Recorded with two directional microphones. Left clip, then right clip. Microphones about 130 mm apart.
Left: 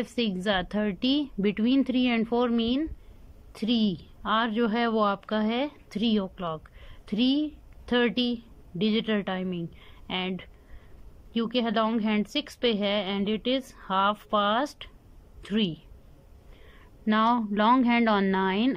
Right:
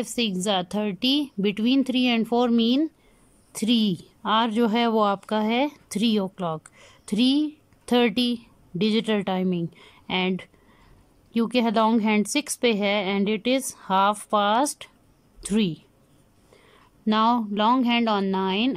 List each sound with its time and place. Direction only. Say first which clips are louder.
0.0 s a woman's voice: right 3 dB; 15° right (ahead or behind)
17.0 s speech: right 3 dB; 20° right (ahead or behind)